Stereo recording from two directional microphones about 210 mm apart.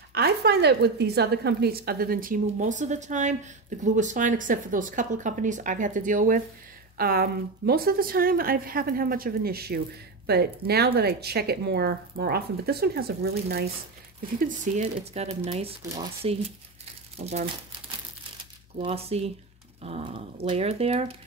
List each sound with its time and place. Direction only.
0.1 s a woman's voice: 50° right (ahead or behind)
14.4 s speech: 35° right (ahead or behind)
15.8 s speech: 15° right (ahead or behind)
17.2 s speech: 30° right (ahead or behind)
18.8 s speech: 30° right (ahead or behind)